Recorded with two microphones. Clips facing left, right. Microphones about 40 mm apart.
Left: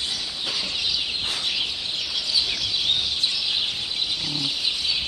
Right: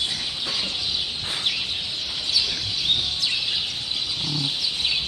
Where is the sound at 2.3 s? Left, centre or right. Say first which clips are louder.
Left 1 dB; left.